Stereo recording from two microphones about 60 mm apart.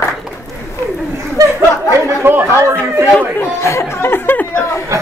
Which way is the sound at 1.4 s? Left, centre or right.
Right.